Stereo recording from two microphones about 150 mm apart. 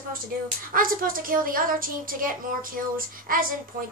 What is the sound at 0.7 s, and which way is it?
A woman's voice, 70° right (ahead or behind).